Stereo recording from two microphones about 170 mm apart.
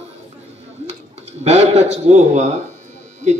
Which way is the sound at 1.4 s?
40° right (ahead or behind).